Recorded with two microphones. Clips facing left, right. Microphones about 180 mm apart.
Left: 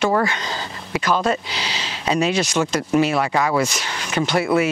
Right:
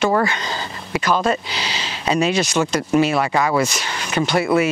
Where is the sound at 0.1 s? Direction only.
10° right (ahead or behind).